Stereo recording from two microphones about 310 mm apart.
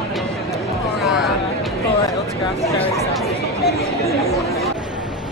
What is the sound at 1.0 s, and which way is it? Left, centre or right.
Speech, centre.